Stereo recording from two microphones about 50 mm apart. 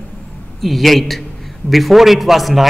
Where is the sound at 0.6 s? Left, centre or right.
Centre.